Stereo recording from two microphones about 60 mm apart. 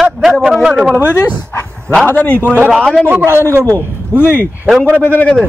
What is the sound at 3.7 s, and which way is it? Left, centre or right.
A man's voice, left.